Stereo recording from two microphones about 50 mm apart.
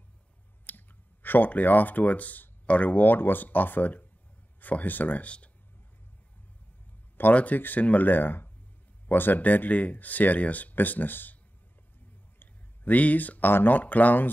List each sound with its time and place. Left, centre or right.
0.7 s speech: left
7.2 s speech: left
12.4 s speech: left